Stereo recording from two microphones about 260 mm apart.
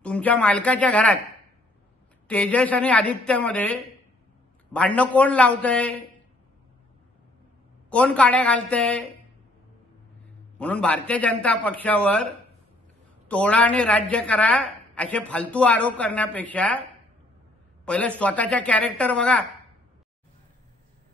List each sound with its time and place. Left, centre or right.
0.0 s a woman's voice: centre
2.2 s a woman's voice: centre
4.7 s a woman's voice: centre
7.9 s a woman's voice: centre
10.6 s a woman's voice: centre
13.3 s a woman's voice: centre
17.8 s a woman's voice: centre